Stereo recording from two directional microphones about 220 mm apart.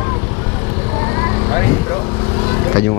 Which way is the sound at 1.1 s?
15° left (ahead or behind).